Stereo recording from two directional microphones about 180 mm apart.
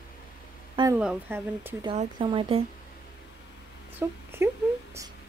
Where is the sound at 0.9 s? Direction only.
10° right (ahead or behind).